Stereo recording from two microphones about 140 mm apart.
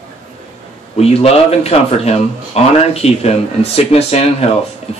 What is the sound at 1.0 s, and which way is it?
Speech, 45° left (ahead or behind).